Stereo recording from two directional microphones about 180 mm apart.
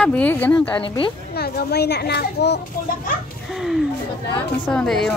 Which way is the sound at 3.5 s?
Centre (ahead or behind).